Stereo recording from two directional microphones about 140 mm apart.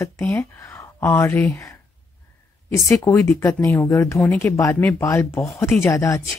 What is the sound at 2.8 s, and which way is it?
A woman's voice, 20° left (ahead or behind).